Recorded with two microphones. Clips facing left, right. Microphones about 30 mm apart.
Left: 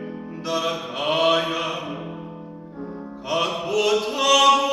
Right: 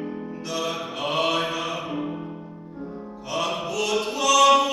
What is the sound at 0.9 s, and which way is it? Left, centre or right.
Mantra, left.